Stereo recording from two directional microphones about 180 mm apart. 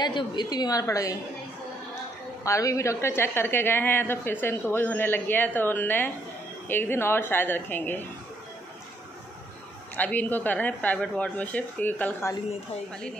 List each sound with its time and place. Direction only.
0.0 s a woman's voice: 25° left (ahead or behind)
2.4 s speech: 15° left (ahead or behind)
9.9 s speech: 10° left (ahead or behind)